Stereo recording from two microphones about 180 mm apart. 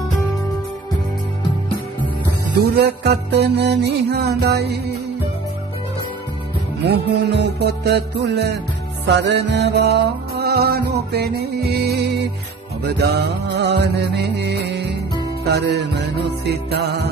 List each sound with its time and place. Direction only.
2.5 s music: 60° right (ahead or behind)
6.9 s music: 65° right (ahead or behind)